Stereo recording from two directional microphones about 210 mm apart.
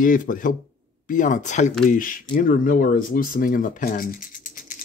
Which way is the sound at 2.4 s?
40° left (ahead or behind).